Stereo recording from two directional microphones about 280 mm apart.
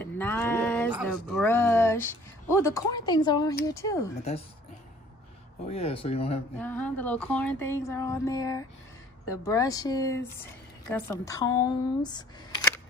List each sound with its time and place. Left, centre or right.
0.0 s a sound: centre
2.5 s speech: centre
4.2 s speech: left
5.7 s speech: left
6.6 s speech: centre